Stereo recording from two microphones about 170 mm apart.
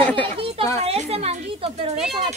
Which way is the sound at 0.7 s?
40° right (ahead or behind).